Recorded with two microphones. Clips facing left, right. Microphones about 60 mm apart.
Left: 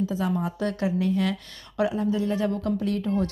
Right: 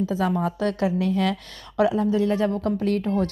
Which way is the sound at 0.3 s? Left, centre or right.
Right.